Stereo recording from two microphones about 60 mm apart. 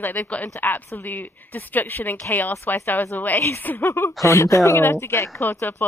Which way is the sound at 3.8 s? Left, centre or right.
Left.